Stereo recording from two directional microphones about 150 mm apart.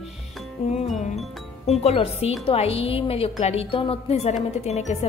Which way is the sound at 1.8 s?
40° left (ahead or behind).